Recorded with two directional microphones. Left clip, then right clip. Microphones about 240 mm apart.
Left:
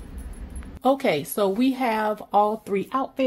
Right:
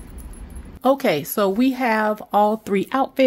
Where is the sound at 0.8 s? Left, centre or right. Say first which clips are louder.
Right 3 dB; right.